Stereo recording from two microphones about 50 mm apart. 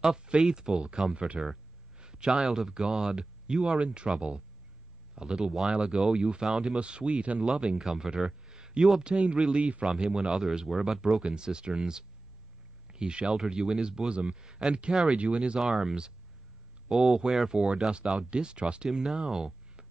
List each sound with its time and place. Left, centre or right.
0.4 s speech: centre
2.0 s a sound: centre
2.3 s speech: centre
5.1 s a man's voice: centre
18.3 s speech: centre
18.9 s speech: centre